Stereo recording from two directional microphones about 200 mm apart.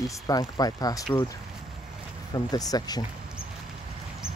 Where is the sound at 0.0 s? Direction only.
15° left (ahead or behind).